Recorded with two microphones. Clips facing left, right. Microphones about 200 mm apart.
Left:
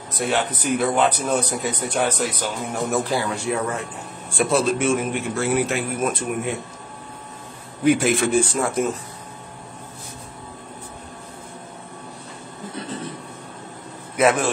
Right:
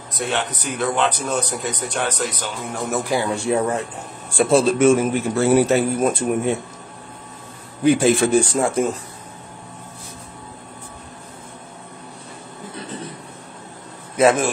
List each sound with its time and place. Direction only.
0.2 s a man's voice: 5° left (ahead or behind)
3.0 s a man's voice: 15° right (ahead or behind)
3.4 s a man's voice: 30° right (ahead or behind)
4.7 s a man's voice: 40° right (ahead or behind)
7.8 s a man's voice: 30° right (ahead or behind)
14.1 s a man's voice: 30° right (ahead or behind)